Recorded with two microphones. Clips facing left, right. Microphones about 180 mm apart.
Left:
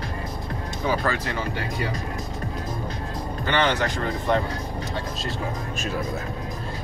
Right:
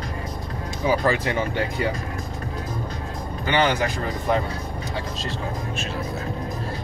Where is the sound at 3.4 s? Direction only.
10° right (ahead or behind).